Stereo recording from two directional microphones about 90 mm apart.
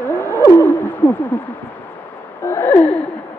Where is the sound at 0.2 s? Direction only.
25° left (ahead or behind).